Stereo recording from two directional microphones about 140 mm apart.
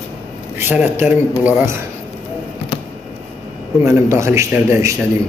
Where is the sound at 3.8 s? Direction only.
20° right (ahead or behind).